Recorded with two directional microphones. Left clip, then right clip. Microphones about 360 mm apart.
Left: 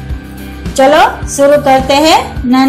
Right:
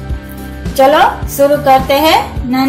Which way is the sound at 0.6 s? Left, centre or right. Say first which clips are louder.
Left 1 dB; centre.